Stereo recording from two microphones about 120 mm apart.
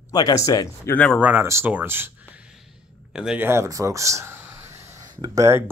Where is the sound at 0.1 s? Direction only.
35° left (ahead or behind).